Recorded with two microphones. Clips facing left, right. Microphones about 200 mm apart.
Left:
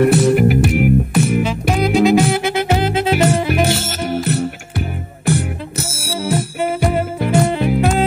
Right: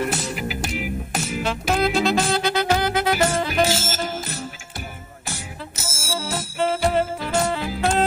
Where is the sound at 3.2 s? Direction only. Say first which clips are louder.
Left 5 dB; 65° left (ahead or behind).